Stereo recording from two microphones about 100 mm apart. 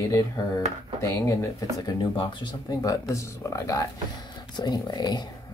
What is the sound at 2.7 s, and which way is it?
Speech, 35° left (ahead or behind).